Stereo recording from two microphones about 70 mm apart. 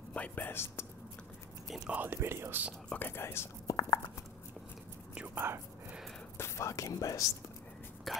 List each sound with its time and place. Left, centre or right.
0.1 s speech: centre
0.5 s speech: left
1.9 s speech: right
2.1 s speech: right
2.9 s speech: left
3.6 s speech: left
5.3 s speech: right
6.3 s speech: left
8.1 s speech: centre